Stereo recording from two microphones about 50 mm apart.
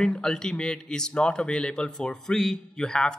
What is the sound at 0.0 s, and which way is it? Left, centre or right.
Speech, centre.